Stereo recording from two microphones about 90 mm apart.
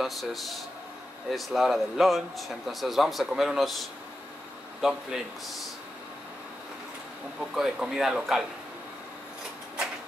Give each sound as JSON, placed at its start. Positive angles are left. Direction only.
{"t": 0.0, "sound": "speech", "side_deg": 0}
{"t": 7.3, "sound": "speech", "side_deg": -5}